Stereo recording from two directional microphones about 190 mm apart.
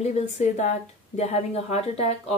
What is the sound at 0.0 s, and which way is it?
A woman's voice, 35° left (ahead or behind).